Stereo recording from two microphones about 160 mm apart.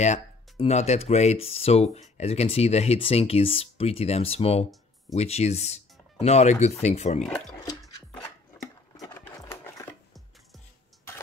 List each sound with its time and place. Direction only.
0.0 s speech: 45° left (ahead or behind)
7.2 s speech: 5° left (ahead or behind)
8.9 s a sound: 20° left (ahead or behind)